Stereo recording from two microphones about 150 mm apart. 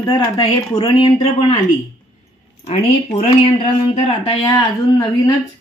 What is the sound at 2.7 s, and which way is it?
Speech, 45° left (ahead or behind).